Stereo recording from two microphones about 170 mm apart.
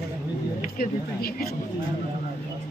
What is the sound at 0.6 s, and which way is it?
Speech, 55° left (ahead or behind).